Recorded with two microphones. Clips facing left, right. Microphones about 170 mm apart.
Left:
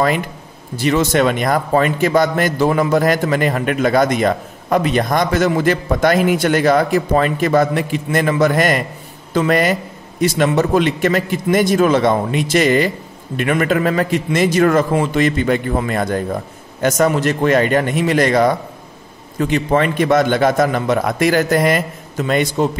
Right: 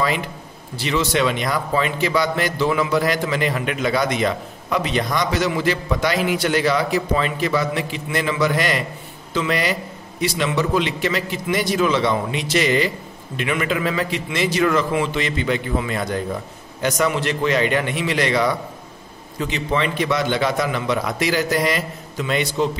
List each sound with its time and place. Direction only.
0.7 s a man's voice: 50° left (ahead or behind)